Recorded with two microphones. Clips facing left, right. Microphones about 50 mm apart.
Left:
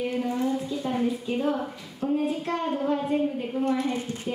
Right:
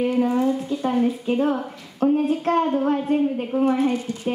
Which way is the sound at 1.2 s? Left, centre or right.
Right.